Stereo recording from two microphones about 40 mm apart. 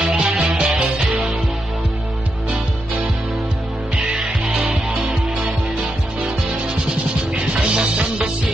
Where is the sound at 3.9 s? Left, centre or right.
Right.